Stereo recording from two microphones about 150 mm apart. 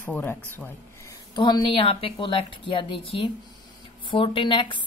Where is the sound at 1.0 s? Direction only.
30° left (ahead or behind).